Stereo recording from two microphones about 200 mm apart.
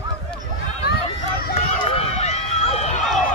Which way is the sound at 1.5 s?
30° left (ahead or behind).